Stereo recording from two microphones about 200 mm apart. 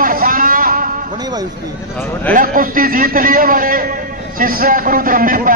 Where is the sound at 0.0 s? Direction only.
45° right (ahead or behind).